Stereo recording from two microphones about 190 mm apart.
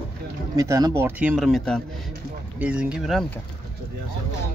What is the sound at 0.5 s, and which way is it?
A man's voice, 15° right (ahead or behind).